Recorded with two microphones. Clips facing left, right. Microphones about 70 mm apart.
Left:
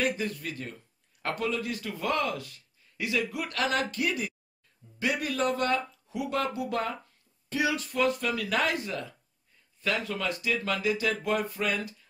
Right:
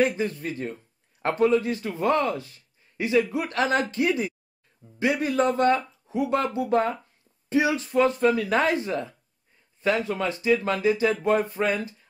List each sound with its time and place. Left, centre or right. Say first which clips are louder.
0.0 s speech: right 6 dB; right